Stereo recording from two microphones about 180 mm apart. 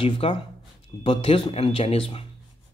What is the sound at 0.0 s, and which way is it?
Speech, 30° left (ahead or behind).